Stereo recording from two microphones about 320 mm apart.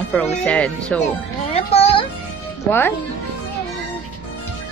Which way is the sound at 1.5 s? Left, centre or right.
Centre.